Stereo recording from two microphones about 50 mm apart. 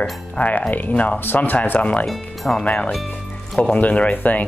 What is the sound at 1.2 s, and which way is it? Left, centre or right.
Speech, left.